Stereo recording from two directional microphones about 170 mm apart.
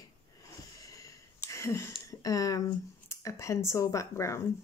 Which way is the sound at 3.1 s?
15° left (ahead or behind).